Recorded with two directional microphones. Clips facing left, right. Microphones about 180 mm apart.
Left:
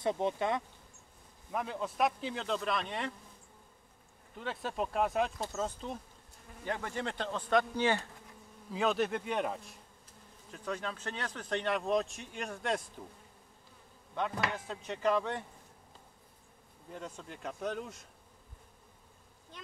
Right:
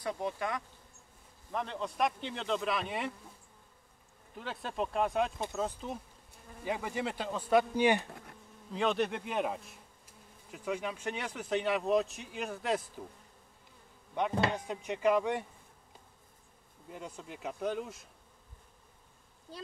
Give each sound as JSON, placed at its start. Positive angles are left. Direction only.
{"t": 0.0, "sound": "speech", "side_deg": 25}
{"t": 1.5, "sound": "speech", "side_deg": 5}
{"t": 4.4, "sound": "speech", "side_deg": 0}
{"t": 8.7, "sound": "speech", "side_deg": 0}
{"t": 14.3, "sound": "speech", "side_deg": -30}
{"t": 14.7, "sound": "speech", "side_deg": -10}
{"t": 16.9, "sound": "speech", "side_deg": -10}